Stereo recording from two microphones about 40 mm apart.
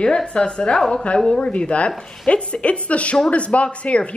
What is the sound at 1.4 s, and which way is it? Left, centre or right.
Speech, left.